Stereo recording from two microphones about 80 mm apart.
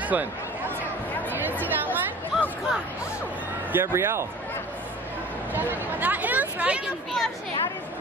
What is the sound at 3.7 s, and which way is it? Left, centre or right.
Speech, right.